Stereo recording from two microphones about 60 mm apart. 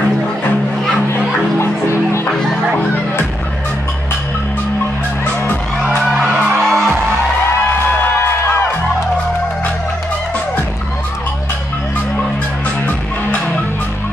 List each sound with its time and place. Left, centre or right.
6.2 s music: right
6.6 s music: centre
8.0 s music: left